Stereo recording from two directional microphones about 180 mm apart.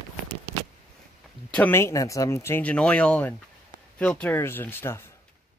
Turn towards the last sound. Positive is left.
turn(degrees=15)  # may be behind; listen again after turning